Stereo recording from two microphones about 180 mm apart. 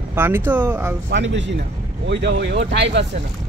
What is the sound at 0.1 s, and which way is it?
Speech, 10° right (ahead or behind).